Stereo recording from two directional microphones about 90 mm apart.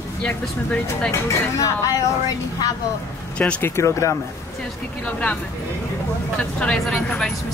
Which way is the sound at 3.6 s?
30° left (ahead or behind).